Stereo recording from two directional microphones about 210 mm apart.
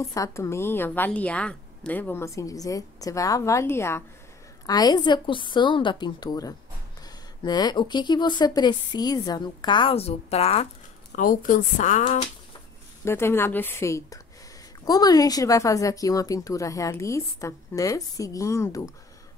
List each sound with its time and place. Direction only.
0.1 s a woman's voice: 15° left (ahead or behind); by 12.3 s 35° left (ahead or behind)
13.0 s a woman's voice: 10° left (ahead or behind)